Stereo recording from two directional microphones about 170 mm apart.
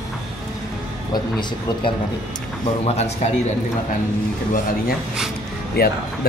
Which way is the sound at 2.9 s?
40° left (ahead or behind).